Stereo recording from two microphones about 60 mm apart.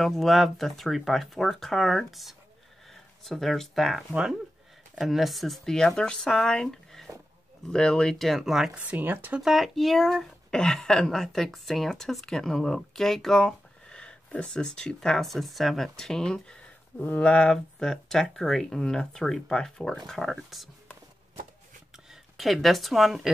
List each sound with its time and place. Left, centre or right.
0.0 s speech: centre
4.1 s speech: centre
4.9 s speech: centre
8.7 s speech: right
9.4 s speech: centre
17.1 s speech: left
20.1 s speech: centre
21.9 s speech: centre